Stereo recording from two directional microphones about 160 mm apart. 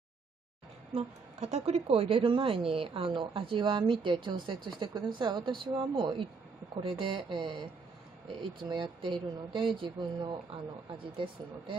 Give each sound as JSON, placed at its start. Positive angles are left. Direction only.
{"t": 0.9, "sound": "a woman's voice", "side_deg": -40}